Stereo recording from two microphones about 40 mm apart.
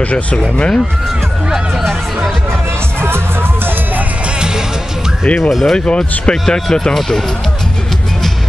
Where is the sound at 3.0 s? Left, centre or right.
Right.